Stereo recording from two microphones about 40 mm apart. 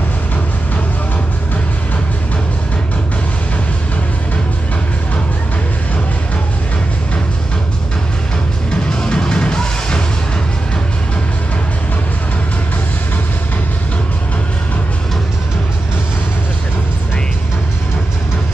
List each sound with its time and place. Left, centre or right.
8.7 s music: left